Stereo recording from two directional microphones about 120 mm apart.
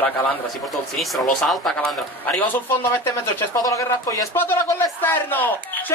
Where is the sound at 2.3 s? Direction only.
15° left (ahead or behind).